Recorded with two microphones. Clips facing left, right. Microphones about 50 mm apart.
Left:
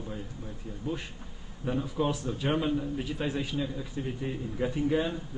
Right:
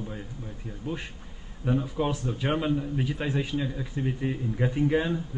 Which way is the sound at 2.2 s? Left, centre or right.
Centre.